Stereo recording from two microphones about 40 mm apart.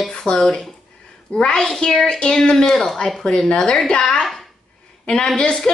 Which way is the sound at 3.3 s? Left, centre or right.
Left.